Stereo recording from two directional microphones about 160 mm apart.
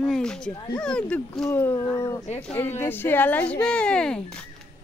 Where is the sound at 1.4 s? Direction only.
20° left (ahead or behind).